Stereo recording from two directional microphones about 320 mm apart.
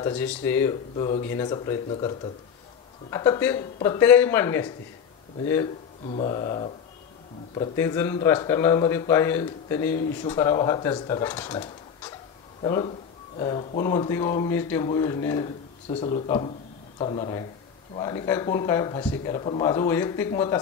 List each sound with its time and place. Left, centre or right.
0.0 s speech: centre